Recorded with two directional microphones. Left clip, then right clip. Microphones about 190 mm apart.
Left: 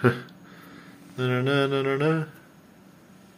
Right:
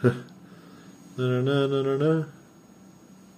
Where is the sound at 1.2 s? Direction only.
15° right (ahead or behind).